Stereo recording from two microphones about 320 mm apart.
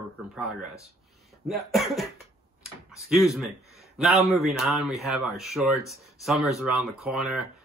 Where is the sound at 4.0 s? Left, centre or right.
Centre.